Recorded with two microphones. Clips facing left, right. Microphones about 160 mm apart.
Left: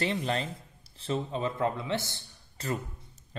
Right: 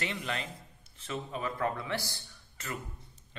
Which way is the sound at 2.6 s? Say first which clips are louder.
Left 8 dB; 35° left (ahead or behind).